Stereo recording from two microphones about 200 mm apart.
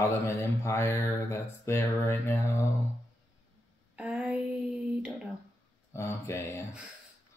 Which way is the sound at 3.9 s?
5° right (ahead or behind).